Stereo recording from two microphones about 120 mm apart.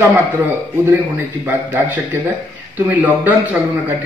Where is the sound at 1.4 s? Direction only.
15° right (ahead or behind).